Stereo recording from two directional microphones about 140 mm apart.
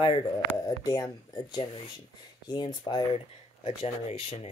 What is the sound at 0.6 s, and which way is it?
Speech, 25° left (ahead or behind).